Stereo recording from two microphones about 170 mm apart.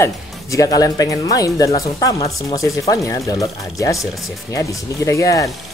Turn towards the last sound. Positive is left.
turn(degrees=20)  # may be behind; listen again after turning